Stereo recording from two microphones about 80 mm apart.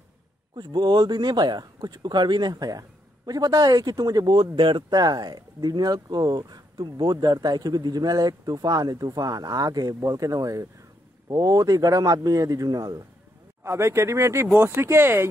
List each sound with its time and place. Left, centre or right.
0.6 s a man's voice: right
4.6 s speech: right
4.9 s a man's voice: right
13.7 s speech: right